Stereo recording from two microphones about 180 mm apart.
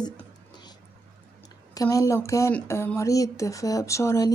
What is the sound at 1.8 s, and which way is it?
Speech, 20° left (ahead or behind).